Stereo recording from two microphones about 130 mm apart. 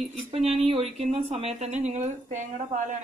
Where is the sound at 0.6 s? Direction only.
50° right (ahead or behind); by 2.8 s 70° right (ahead or behind).